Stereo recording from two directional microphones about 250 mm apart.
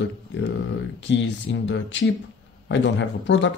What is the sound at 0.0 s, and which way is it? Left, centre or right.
Speech, left.